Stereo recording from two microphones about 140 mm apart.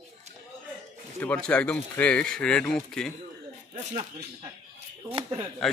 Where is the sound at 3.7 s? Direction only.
50° right (ahead or behind).